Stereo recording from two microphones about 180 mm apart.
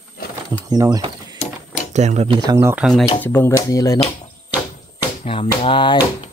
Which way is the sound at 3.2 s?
10° left (ahead or behind).